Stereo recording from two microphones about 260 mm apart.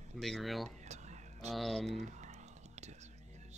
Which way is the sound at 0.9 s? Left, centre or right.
Right.